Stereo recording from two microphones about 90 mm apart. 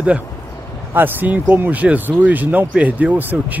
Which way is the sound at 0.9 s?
20° right (ahead or behind).